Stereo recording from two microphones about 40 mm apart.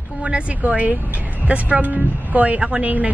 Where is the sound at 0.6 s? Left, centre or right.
Right.